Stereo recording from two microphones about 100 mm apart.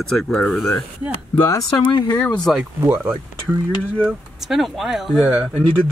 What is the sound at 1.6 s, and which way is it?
Speech, 40° left (ahead or behind).